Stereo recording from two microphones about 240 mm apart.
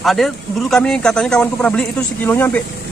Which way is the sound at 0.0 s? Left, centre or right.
Centre.